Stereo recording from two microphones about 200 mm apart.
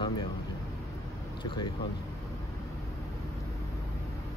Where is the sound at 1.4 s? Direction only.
25° left (ahead or behind).